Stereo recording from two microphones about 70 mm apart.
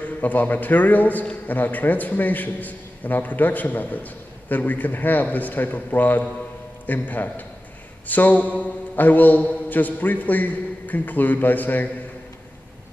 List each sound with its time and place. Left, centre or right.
0.2 s a man's voice: left